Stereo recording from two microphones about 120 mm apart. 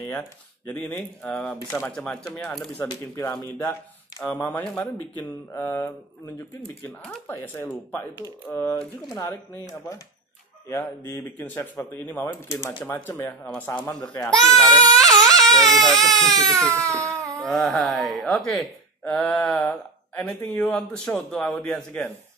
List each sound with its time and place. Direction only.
0.7 s speech: 10° left (ahead or behind)
2.8 s speech: 20° left (ahead or behind)
6.9 s speech: 15° left (ahead or behind)
9.1 s speech: 30° left (ahead or behind)
12.3 s speech: 25° left (ahead or behind)
14.3 s speech: 5° left (ahead or behind)
16.7 s a sound: 25° right (ahead or behind)
17.4 s speech: 5° left (ahead or behind)